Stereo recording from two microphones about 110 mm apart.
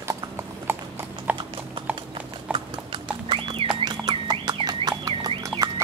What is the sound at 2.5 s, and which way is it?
Horse, 50° right (ahead or behind).